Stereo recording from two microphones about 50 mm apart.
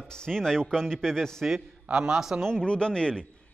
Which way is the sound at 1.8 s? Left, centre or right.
Centre.